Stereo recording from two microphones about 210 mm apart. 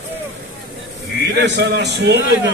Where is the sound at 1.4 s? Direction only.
55° right (ahead or behind).